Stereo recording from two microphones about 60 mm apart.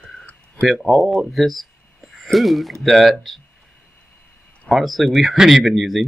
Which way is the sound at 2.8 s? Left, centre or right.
Centre.